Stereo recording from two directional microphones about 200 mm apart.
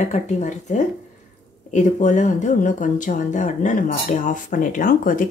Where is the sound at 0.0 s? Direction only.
35° left (ahead or behind).